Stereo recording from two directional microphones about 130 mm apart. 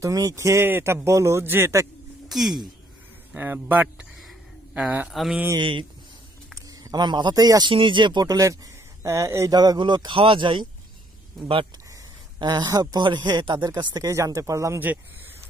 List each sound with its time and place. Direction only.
0.0 s a man's voice: 25° right (ahead or behind)
2.2 s speech: centre (ahead or behind)
3.3 s speech: 15° right (ahead or behind)
4.2 s a sound: 5° right (ahead or behind)
5.6 s a man's voice: 40° right (ahead or behind); by 15.0 s 20° right (ahead or behind)